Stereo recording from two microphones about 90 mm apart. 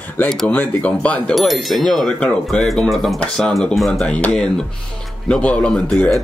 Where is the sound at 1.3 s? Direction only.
Centre (ahead or behind).